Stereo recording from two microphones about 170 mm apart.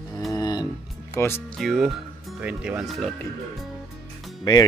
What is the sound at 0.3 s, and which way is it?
Music, 20° left (ahead or behind).